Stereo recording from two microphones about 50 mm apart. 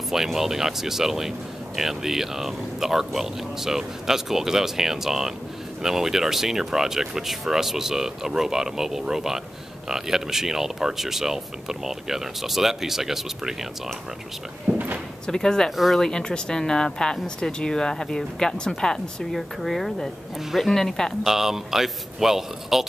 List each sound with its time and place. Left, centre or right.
0.1 s speech: centre
14.7 s speech: right
15.2 s speech: centre
15.7 s speech: centre
16.0 s speech: centre
21.2 s speech: centre